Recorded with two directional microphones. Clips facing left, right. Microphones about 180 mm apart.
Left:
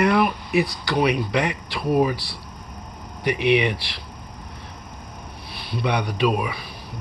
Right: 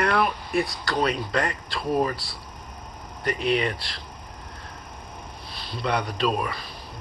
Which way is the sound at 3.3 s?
75° left (ahead or behind).